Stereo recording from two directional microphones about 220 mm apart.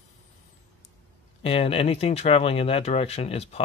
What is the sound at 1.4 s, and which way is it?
Speech, 25° left (ahead or behind).